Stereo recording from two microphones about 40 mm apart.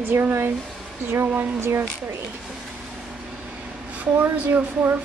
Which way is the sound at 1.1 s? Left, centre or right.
Right.